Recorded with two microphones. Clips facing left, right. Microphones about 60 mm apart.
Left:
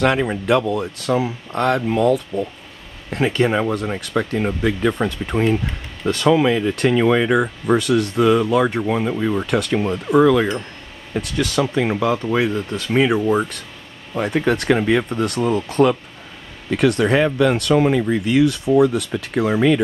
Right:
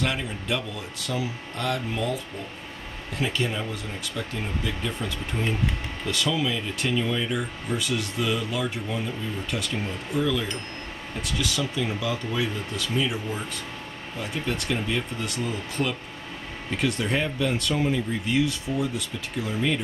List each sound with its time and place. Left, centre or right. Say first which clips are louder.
0.0 s speech: left 11 dB; left
6.0 s speech: left 11 dB; left
12.9 s speech: left 13 dB; left
16.7 s speech: left 10 dB; left